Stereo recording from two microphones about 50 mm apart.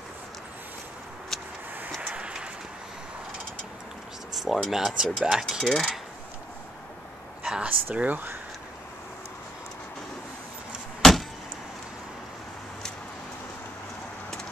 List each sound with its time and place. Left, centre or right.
1.3 s vehicle: centre
4.3 s a sound: centre
4.6 s speech: centre
5.5 s speech: centre
7.4 s speech: right
11.0 s a sound: centre